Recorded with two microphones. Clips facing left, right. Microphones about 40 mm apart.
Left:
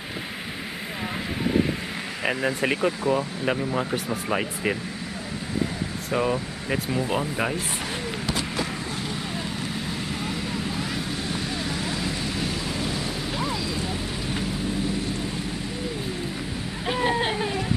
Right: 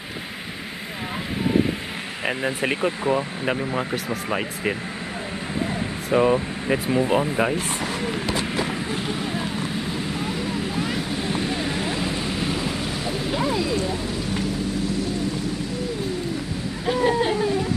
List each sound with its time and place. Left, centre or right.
2.2 s speech: centre
6.0 s speech: centre
11.3 s vehicle: right
16.8 s a sound: centre